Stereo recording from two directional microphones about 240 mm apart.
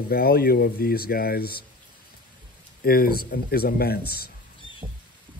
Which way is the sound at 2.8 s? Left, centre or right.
Left.